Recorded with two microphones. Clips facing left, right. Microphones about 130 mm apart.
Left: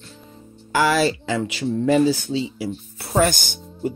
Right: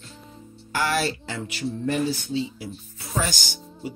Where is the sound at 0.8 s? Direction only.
90° left.